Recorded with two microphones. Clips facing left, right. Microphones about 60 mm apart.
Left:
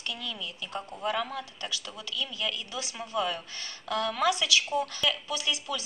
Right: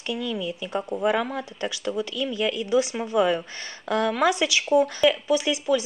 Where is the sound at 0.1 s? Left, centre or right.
Centre.